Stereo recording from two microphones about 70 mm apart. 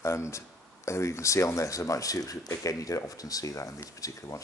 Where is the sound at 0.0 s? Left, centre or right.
Left.